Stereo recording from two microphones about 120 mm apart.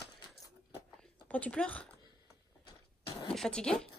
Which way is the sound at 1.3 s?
10° left (ahead or behind).